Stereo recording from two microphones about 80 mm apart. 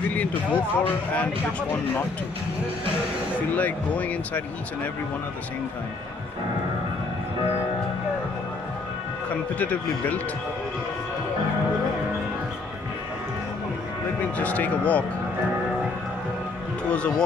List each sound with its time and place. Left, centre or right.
0.1 s speech: centre
3.5 s speech: centre
9.6 s speech: centre
14.2 s speech: centre